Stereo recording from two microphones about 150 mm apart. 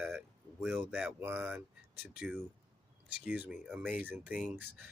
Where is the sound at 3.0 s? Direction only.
10° right (ahead or behind).